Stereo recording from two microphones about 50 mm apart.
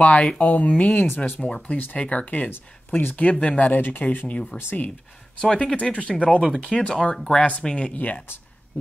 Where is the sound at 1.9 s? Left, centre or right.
Left.